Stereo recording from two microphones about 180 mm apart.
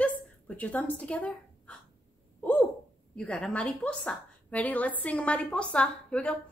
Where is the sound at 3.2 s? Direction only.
5° left (ahead or behind).